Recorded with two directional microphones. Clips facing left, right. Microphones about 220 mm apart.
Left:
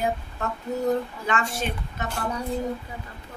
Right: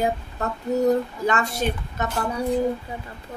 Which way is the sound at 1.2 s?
40° right (ahead or behind).